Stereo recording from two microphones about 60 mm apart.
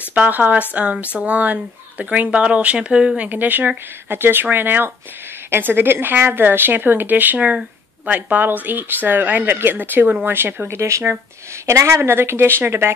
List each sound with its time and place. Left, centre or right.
0.1 s speech: right
3.3 s a woman's voice: right